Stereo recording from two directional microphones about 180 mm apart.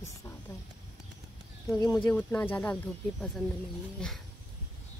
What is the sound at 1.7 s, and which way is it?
Speech, 20° left (ahead or behind).